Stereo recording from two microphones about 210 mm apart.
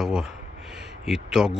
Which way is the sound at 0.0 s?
5° right (ahead or behind).